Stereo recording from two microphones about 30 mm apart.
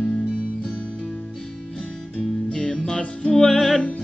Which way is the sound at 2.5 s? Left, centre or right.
Left.